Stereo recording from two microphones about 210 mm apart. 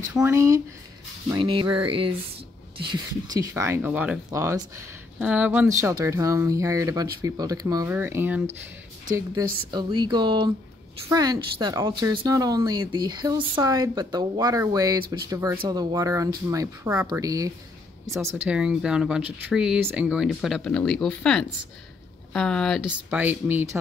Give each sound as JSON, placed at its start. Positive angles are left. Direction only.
{"t": 0.1, "sound": "speech", "side_deg": -15}